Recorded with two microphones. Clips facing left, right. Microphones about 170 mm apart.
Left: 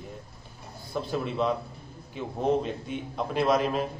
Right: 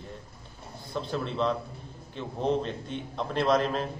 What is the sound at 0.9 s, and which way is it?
A man's voice, 10° left (ahead or behind).